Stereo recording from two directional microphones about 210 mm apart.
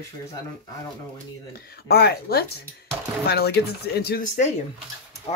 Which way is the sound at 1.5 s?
50° left (ahead or behind).